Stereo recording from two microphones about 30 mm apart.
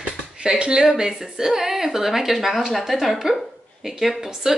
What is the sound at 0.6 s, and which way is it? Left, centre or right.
Speech, right.